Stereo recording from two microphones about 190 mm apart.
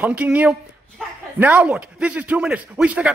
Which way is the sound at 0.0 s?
5° right (ahead or behind).